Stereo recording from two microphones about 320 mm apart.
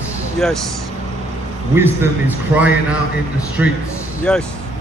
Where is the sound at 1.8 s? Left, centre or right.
Centre.